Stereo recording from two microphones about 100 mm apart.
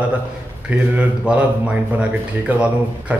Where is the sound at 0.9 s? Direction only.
15° right (ahead or behind).